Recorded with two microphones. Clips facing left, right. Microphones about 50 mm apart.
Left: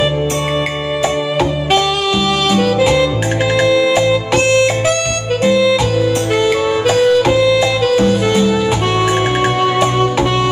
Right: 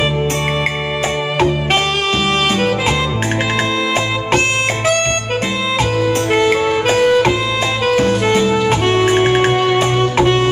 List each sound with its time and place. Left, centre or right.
5.9 s music: right
9.8 s music: right